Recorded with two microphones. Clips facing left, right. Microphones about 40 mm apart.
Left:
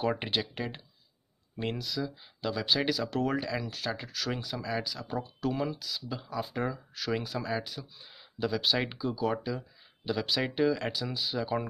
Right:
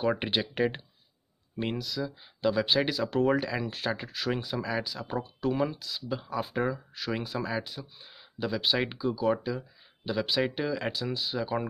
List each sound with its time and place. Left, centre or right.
0.2 s speech: centre
1.8 s speech: centre
2.4 s speech: centre
4.0 s speech: centre